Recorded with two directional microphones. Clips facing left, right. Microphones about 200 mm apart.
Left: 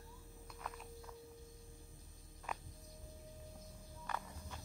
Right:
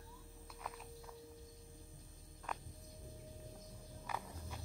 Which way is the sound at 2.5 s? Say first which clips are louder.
Even; 5° left (ahead or behind).